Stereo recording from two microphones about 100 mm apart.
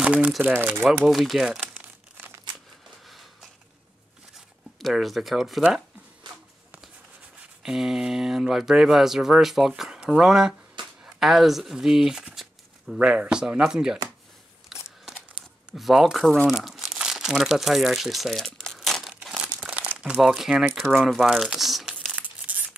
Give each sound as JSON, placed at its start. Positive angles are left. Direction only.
{"t": 0.0, "sound": "speech", "side_deg": -15}
{"t": 1.0, "sound": "speech", "side_deg": 0}
{"t": 1.7, "sound": "crumpling", "side_deg": -20}
{"t": 4.7, "sound": "speech", "side_deg": 0}
{"t": 7.6, "sound": "speech", "side_deg": -5}
{"t": 14.7, "sound": "a sound", "side_deg": 0}
{"t": 15.7, "sound": "speech", "side_deg": 0}
{"t": 16.4, "sound": "crumpling", "side_deg": -5}
{"t": 20.2, "sound": "speech", "side_deg": -5}
{"t": 22.1, "sound": "tearing", "side_deg": -15}